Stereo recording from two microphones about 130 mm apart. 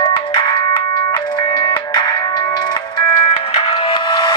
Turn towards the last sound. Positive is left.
turn(degrees=35)  # may be behind; listen again after turning